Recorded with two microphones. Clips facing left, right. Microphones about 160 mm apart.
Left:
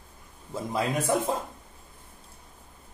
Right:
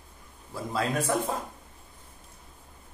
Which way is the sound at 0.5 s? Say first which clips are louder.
Left 1 dB; 20° left (ahead or behind).